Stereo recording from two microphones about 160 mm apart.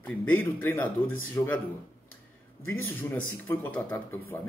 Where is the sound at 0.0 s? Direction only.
10° left (ahead or behind).